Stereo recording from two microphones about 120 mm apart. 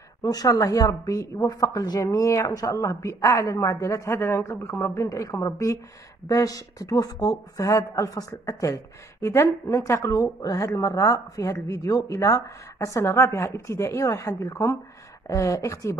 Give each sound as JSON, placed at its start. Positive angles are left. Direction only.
{"t": 0.2, "sound": "a woman's voice", "side_deg": 30}